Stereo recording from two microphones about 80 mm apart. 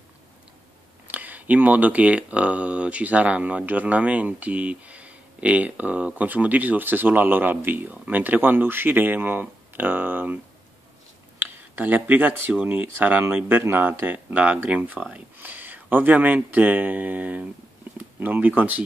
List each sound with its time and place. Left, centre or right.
1.0 s speech: right
11.7 s speech: right